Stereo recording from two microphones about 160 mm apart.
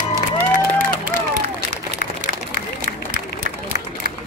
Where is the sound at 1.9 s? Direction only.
55° right (ahead or behind).